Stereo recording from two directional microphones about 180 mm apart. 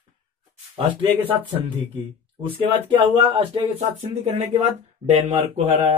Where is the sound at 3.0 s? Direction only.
30° right (ahead or behind).